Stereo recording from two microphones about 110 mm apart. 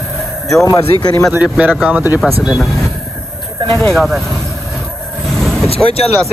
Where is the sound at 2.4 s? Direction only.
Centre (ahead or behind).